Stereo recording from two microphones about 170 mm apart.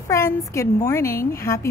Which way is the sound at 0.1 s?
15° left (ahead or behind).